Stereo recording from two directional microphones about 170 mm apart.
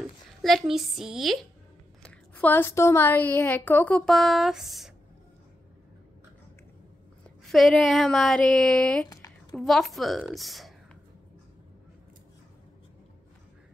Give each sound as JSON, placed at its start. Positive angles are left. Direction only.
{"t": 0.4, "sound": "speech", "side_deg": 0}
{"t": 2.0, "sound": "a woman's voice", "side_deg": 10}
{"t": 7.4, "sound": "speech", "side_deg": 0}
{"t": 9.1, "sound": "a sound", "side_deg": 20}
{"t": 9.6, "sound": "speech", "side_deg": 0}